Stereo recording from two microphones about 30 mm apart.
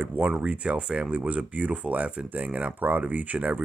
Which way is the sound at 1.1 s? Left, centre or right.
Right.